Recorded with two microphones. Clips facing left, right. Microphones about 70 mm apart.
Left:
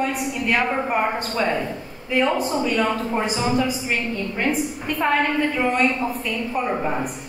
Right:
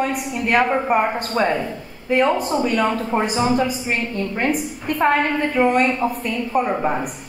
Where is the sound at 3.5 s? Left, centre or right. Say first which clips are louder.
Right 2 dB; right.